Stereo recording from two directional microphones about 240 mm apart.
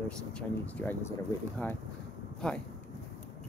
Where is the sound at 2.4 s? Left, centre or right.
Centre.